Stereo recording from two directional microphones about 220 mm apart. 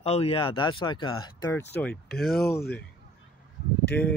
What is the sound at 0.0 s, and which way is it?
Speech, 25° left (ahead or behind).